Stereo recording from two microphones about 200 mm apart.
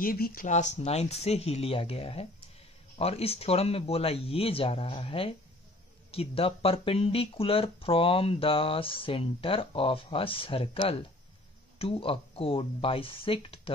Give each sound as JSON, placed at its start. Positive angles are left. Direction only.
{"t": 0.0, "sound": "speech", "side_deg": 45}